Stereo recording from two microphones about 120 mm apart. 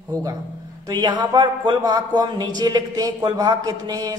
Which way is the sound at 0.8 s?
35° right (ahead or behind).